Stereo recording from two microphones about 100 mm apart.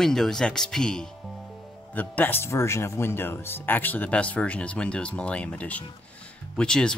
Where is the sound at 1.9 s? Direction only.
15° left (ahead or behind).